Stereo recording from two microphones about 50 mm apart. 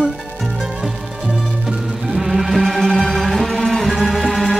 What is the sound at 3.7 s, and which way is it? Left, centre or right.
Music, centre.